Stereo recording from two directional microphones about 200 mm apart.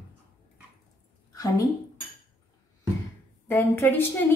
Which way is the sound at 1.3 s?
15° left (ahead or behind).